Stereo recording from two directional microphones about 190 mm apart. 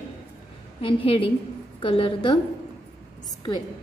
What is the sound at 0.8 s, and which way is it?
A woman's voice, 30° left (ahead or behind).